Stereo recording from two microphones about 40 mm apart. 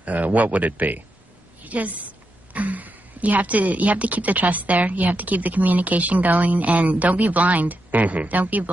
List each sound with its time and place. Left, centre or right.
0.0 s speech: right
1.6 s a sound: right
2.5 s speech: right